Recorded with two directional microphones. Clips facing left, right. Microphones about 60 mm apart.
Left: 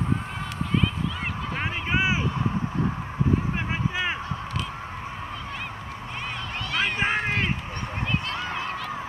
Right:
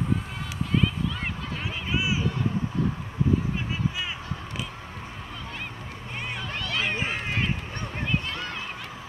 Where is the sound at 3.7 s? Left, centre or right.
Left.